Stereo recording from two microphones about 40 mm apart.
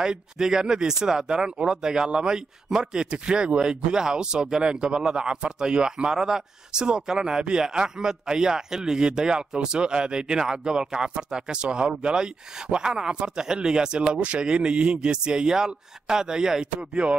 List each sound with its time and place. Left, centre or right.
0.0 s speech: centre
17.0 s speech: right